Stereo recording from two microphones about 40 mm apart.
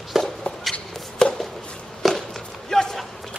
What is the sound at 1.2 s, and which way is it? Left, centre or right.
Chop, centre.